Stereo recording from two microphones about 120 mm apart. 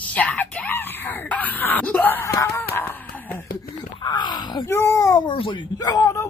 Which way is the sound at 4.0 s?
40° left (ahead or behind).